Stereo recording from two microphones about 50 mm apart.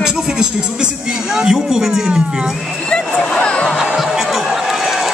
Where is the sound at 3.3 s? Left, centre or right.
Left.